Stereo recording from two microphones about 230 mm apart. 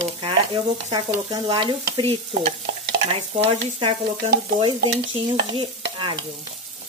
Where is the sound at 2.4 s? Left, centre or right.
Right.